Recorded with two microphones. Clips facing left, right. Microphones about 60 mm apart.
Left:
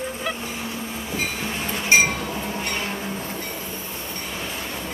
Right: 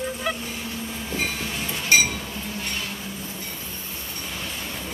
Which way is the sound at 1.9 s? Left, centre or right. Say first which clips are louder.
Left 2 dB; left.